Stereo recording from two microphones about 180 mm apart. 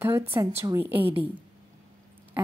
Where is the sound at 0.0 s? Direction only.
15° right (ahead or behind).